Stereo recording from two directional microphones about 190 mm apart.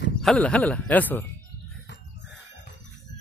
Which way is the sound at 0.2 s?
5° left (ahead or behind).